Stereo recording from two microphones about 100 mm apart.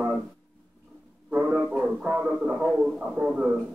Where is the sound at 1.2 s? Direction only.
10° right (ahead or behind).